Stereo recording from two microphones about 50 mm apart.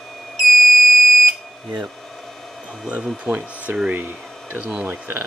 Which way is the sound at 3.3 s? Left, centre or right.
Right.